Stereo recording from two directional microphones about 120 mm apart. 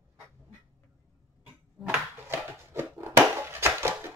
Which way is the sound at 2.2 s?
20° right (ahead or behind).